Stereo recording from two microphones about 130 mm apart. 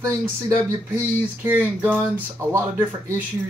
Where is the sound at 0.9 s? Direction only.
15° right (ahead or behind).